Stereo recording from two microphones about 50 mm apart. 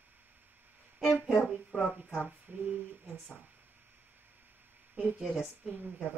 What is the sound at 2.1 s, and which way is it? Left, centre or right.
Speech, right.